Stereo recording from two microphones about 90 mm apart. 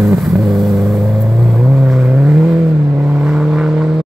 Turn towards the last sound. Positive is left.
turn(degrees=-5)  # may be behind; listen again after turning